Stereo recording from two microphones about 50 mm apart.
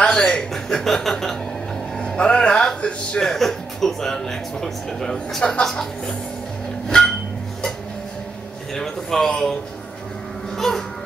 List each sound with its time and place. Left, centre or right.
0.0 s speech: centre
2.0 s speech: centre
3.2 s speech: centre
6.9 s a sound: centre
8.7 s speech: centre